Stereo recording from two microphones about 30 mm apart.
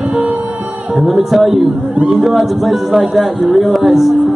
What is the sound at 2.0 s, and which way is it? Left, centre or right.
Speech, right.